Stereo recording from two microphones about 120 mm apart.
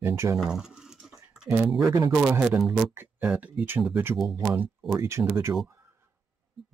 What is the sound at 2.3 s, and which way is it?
Speech, 20° right (ahead or behind).